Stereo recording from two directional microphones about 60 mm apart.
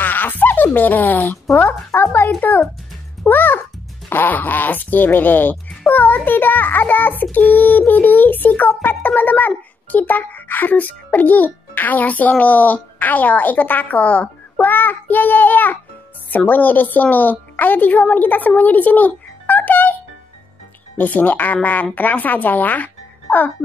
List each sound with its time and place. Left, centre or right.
0.0 s a child's voice: left
21.0 s a child's voice: left